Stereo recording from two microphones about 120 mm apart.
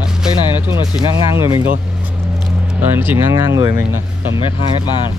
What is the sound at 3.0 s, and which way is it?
Speech, 20° right (ahead or behind).